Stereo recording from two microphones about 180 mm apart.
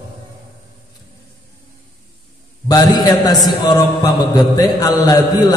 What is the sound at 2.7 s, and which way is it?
A man's voice, 20° left (ahead or behind).